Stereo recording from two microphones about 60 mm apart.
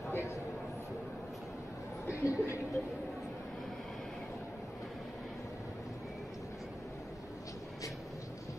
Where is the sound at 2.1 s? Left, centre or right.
Left.